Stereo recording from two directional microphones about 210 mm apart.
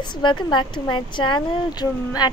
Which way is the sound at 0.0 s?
20° left (ahead or behind).